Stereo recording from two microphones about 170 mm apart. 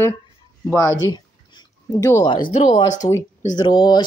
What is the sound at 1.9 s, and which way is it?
Speech, 20° left (ahead or behind).